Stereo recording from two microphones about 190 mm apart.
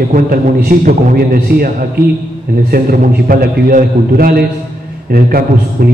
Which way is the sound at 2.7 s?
50° right (ahead or behind).